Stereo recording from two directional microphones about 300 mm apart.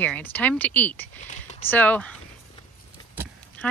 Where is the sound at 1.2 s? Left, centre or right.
Left.